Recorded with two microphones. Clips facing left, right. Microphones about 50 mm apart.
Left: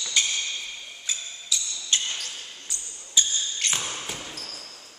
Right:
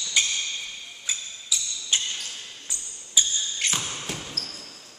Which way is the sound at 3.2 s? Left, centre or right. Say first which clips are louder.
Even; centre.